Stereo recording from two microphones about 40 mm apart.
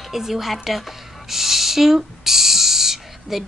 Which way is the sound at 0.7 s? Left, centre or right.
Centre.